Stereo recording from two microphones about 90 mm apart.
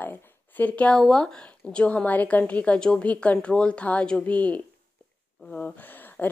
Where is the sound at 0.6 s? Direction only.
15° left (ahead or behind).